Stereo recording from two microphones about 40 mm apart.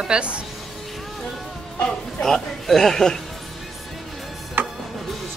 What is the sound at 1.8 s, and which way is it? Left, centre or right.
Speech, centre.